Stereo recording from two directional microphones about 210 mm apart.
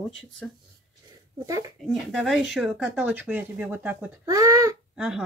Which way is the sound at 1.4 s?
15° right (ahead or behind).